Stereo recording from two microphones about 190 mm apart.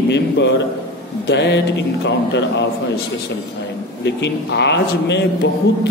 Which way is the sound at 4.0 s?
65° left (ahead or behind).